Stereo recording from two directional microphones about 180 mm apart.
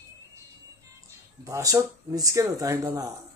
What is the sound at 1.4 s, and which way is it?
Speech, 20° right (ahead or behind).